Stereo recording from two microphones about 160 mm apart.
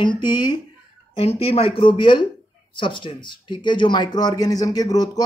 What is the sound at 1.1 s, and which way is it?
A man's voice, 40° left (ahead or behind).